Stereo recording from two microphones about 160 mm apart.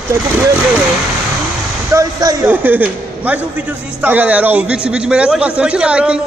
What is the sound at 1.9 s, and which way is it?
Speech, 20° right (ahead or behind).